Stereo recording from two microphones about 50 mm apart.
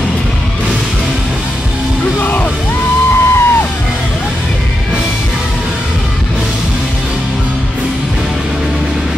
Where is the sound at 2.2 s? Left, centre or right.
Left.